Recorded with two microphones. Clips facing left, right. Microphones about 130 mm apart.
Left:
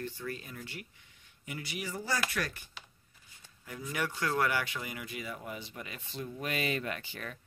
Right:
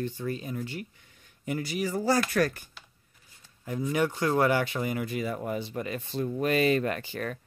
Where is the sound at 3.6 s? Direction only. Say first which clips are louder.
Right 9 dB; 25° right (ahead or behind).